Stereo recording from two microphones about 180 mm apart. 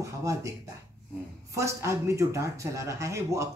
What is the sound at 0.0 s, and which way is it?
Speech, 15° right (ahead or behind).